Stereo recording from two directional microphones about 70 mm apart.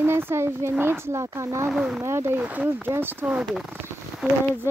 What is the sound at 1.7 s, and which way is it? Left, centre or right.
Speech, centre.